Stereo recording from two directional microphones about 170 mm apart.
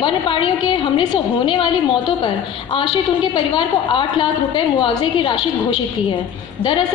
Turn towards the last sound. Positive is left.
turn(degrees=30)  # may be behind; listen again after turning